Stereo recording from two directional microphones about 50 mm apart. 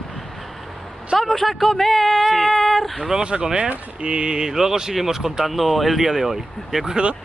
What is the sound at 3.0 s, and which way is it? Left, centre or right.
Speech, centre.